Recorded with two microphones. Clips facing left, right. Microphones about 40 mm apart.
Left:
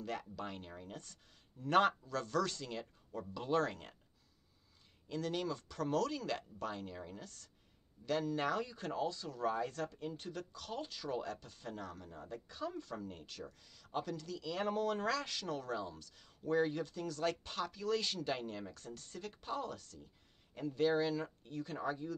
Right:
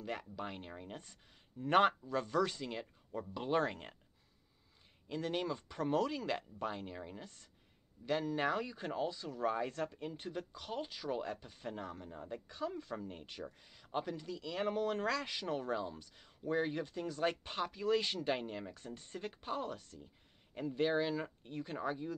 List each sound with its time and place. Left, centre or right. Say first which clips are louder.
0.0 s speech: even; centre
5.0 s speech: right 1 dB; right
15.2 s speech: right 3 dB; right